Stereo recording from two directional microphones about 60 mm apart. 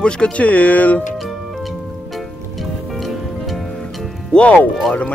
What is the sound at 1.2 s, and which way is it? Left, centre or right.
Music, centre.